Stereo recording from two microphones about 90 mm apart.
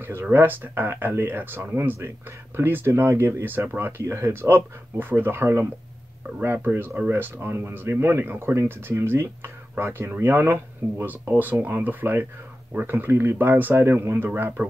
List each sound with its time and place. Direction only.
0.0 s speech: 25° right (ahead or behind)
4.0 s speech: 35° right (ahead or behind)